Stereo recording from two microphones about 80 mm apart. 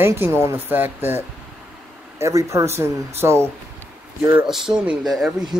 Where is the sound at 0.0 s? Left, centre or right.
Right.